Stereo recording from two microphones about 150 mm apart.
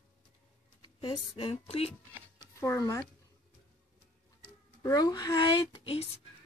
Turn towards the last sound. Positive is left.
turn(degrees=35)  # may be behind; listen again after turning